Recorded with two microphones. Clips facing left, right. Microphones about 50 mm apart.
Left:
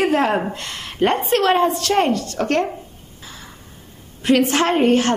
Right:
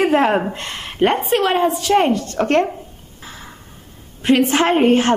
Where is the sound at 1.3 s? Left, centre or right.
Centre.